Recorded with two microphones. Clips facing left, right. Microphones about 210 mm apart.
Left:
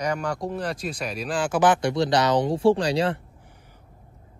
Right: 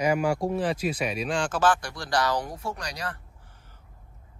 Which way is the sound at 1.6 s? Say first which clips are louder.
Left 8 dB; 20° left (ahead or behind).